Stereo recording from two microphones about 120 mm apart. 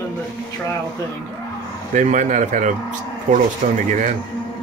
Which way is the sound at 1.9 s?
90° right.